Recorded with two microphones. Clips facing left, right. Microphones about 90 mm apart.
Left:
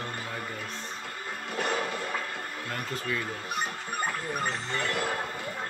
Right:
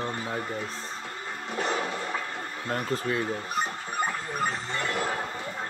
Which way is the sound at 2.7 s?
35° right (ahead or behind).